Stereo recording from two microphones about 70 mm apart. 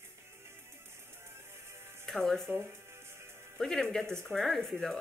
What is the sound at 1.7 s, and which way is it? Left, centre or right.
Music, right.